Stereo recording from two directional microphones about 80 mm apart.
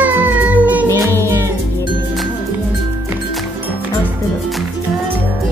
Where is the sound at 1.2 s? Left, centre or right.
Right.